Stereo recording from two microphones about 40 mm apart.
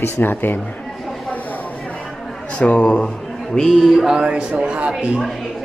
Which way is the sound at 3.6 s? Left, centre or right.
Centre.